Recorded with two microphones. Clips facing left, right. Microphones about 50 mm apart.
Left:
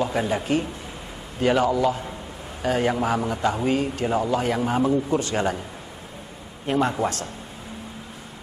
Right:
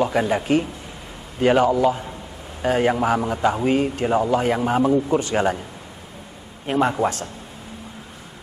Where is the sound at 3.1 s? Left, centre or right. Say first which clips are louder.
Right 3 dB; right.